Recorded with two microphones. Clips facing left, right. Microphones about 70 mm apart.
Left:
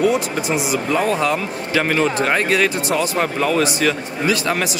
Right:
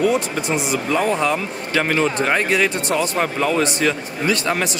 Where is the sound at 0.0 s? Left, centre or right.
Centre.